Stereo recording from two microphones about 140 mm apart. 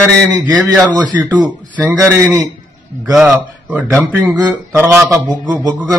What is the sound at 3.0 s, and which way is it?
Speech, centre (ahead or behind).